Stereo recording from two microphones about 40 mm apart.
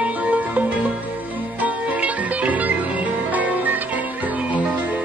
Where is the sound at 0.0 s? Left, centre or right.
Right.